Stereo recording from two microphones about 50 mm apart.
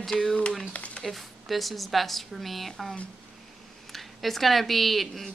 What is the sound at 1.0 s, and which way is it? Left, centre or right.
Speech, centre.